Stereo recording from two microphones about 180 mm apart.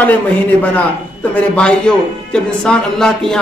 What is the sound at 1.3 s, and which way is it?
A man's voice, 5° left (ahead or behind).